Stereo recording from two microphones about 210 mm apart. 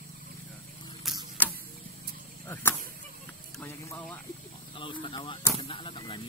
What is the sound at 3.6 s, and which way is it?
Speech, 10° left (ahead or behind).